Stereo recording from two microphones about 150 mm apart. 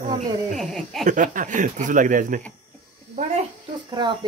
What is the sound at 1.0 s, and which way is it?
Speech, 60° right (ahead or behind).